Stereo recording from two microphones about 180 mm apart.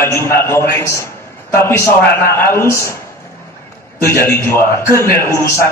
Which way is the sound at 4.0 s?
15° left (ahead or behind).